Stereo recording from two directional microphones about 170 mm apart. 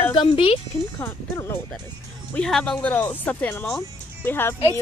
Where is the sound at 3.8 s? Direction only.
15° left (ahead or behind).